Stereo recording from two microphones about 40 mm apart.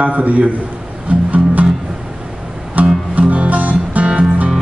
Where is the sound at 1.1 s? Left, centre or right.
Right.